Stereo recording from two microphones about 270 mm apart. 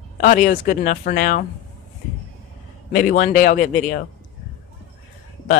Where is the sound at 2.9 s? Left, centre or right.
Left.